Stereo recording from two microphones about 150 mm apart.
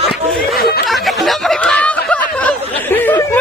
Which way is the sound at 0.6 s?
90° left.